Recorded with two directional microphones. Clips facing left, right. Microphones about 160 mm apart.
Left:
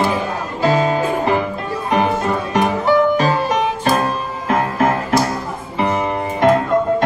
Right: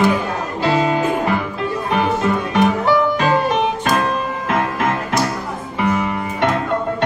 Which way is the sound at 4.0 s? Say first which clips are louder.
Right 1 dB; 35° left (ahead or behind).